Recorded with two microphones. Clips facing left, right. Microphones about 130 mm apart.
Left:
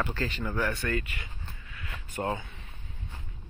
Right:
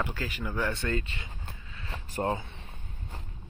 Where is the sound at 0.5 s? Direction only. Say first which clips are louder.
Right 1 dB; 25° right (ahead or behind).